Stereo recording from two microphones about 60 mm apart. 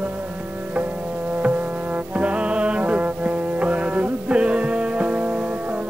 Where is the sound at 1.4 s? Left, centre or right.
Right.